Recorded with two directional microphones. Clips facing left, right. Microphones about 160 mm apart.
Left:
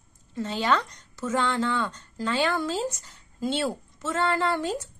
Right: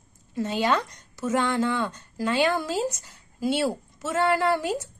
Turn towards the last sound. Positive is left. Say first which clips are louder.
# right 3 dB
turn(degrees=-10)  # may be behind; listen again after turning